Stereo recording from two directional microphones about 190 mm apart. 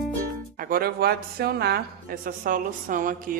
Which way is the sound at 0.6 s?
50° right (ahead or behind).